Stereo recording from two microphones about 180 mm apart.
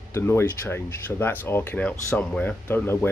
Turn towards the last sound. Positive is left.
turn(degrees=15)  # may be behind; listen again after turning